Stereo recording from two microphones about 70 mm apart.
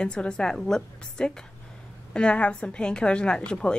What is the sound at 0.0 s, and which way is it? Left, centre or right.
A woman's voice, centre.